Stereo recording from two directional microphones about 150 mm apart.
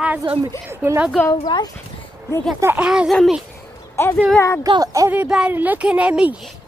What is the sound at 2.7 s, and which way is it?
Speech, 5° right (ahead or behind).